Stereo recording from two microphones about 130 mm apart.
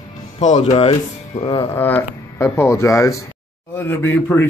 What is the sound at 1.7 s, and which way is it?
A man's voice, 15° left (ahead or behind).